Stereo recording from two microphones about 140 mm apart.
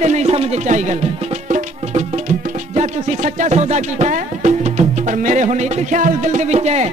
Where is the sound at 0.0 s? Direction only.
55° right (ahead or behind).